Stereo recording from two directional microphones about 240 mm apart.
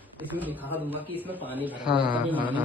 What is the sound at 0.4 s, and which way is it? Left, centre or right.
Speech, centre.